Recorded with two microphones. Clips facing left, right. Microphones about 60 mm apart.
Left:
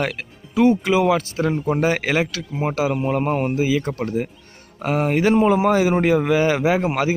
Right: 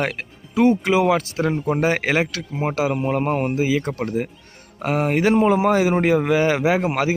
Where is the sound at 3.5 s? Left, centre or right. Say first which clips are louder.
Even; right.